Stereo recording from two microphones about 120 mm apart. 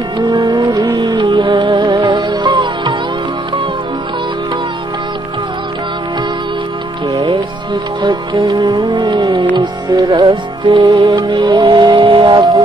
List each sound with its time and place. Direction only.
0.7 s music: 40° right (ahead or behind)
2.0 s music: 30° right (ahead or behind)
7.2 s music: 45° right (ahead or behind)
10.2 s music: 40° right (ahead or behind)
11.0 s music: 30° right (ahead or behind)